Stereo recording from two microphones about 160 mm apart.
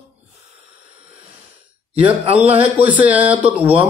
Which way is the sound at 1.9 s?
10° right (ahead or behind).